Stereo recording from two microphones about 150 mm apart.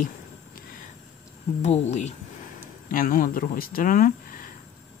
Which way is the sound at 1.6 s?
50° left (ahead or behind).